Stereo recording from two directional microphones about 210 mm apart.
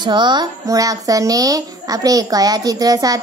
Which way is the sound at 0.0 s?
20° right (ahead or behind).